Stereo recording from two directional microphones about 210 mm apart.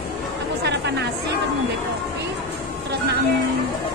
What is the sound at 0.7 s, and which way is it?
Chatter, 55° right (ahead or behind).